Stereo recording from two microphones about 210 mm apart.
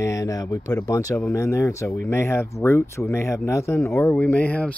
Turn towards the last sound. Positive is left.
turn(degrees=5)  # may be behind; listen again after turning